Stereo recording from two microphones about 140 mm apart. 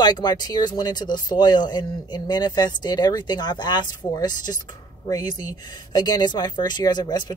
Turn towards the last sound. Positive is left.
turn(degrees=30)  # may be behind; listen again after turning